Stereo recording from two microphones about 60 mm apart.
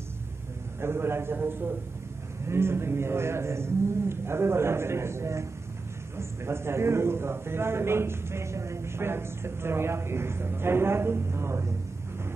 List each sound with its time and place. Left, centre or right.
0.7 s a man's voice: right